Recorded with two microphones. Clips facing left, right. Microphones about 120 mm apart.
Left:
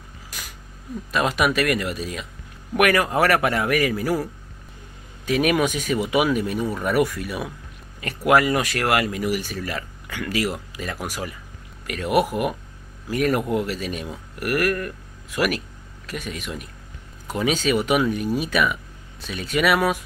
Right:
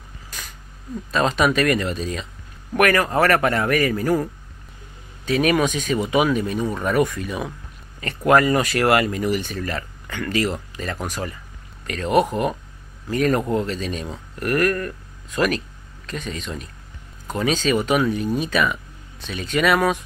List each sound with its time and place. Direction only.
1.1 s speech: 10° left (ahead or behind)